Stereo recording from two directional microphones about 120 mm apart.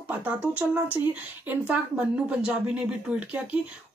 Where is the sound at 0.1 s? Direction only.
15° right (ahead or behind).